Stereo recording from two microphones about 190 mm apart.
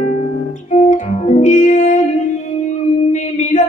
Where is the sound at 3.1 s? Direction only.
40° left (ahead or behind).